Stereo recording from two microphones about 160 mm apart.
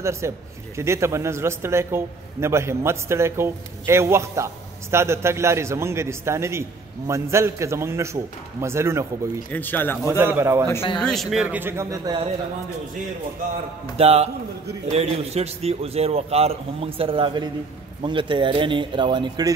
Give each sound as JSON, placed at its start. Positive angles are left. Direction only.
{"t": 0.0, "sound": "a man's voice", "side_deg": -15}
{"t": 9.5, "sound": "speech", "side_deg": 10}
{"t": 10.0, "sound": "a man's voice", "side_deg": -15}
{"t": 11.0, "sound": "a man's voice", "side_deg": 0}
{"t": 13.9, "sound": "a man's voice", "side_deg": -40}